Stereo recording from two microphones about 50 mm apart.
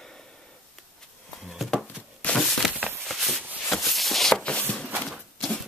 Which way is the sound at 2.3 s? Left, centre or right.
Left.